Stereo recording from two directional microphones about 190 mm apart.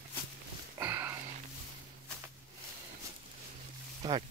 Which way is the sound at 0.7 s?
10° right (ahead or behind).